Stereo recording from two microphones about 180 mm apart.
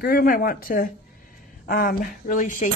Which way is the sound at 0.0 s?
55° left (ahead or behind).